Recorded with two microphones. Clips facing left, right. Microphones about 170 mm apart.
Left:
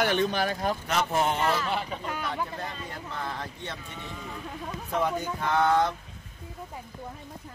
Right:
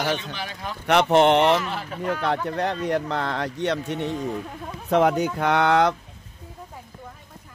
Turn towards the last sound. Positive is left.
turn(degrees=-80)